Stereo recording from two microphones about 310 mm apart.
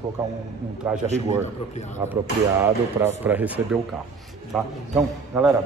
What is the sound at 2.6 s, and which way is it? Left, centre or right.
A man's voice, centre.